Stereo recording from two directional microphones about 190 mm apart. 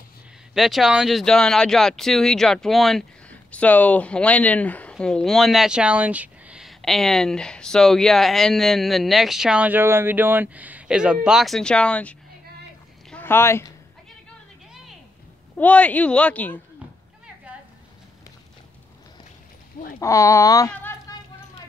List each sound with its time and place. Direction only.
0.6 s speech: centre (ahead or behind)
15.5 s speech: 5° left (ahead or behind)
20.0 s speech: 15° left (ahead or behind)